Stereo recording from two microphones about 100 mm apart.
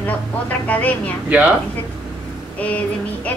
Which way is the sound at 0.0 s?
15° left (ahead or behind).